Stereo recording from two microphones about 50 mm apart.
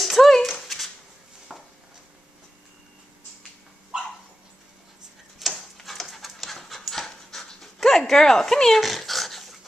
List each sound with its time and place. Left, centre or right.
0.0 s a sound: centre
5.4 s tick-tock: centre
5.9 s pant: centre
8.1 s speech: centre
8.8 s dog: centre